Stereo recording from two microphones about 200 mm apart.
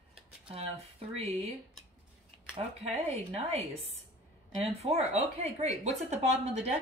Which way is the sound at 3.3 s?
30° right (ahead or behind).